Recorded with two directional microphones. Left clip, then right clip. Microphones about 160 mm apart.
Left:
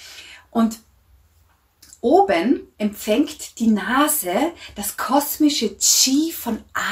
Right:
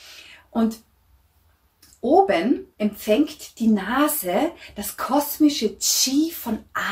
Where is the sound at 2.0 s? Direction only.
10° left (ahead or behind).